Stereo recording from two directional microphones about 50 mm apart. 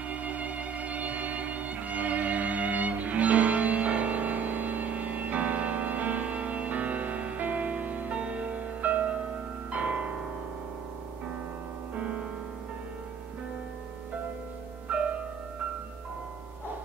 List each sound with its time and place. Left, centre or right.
0.1 s music: right
14.9 s music: right